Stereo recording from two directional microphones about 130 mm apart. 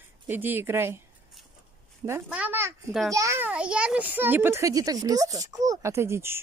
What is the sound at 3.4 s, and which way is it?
A child's voice, 10° right (ahead or behind).